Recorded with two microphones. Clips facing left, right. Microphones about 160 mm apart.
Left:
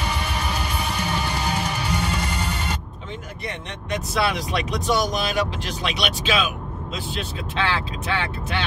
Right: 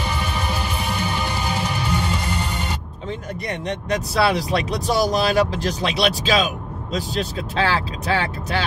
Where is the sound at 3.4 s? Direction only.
35° right (ahead or behind).